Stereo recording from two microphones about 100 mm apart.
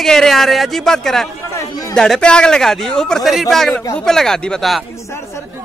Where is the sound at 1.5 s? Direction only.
35° left (ahead or behind).